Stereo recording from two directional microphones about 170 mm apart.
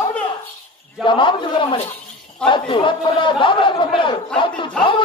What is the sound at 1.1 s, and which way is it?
A man's voice, 30° left (ahead or behind).